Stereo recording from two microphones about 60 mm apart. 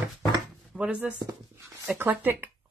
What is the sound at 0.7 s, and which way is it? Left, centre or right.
Speech, centre.